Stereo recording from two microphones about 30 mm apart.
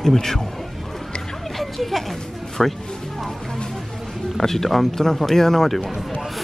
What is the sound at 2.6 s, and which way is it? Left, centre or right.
Speech, centre.